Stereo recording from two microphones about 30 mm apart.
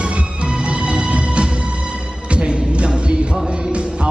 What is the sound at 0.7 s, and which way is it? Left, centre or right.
Music, right.